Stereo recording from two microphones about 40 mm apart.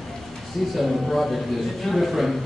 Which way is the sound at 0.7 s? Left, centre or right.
Centre.